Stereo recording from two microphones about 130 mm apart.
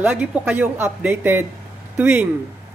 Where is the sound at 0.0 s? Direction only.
15° right (ahead or behind).